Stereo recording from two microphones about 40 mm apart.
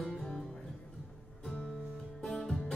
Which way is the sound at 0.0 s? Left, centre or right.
Centre.